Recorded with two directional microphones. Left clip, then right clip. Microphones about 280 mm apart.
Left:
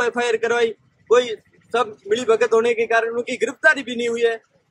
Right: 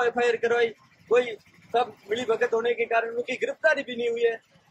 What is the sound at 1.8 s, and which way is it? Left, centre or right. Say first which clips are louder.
Speech: left 5 dB; centre.